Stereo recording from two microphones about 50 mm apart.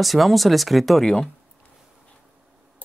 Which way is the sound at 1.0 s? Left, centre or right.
Left.